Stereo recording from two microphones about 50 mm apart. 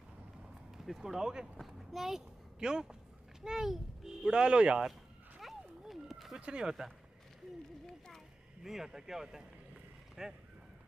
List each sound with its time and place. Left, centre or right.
0.7 s a child's voice: centre
5.4 s a sound: centre
6.3 s a child's voice: centre
8.6 s a child's voice: centre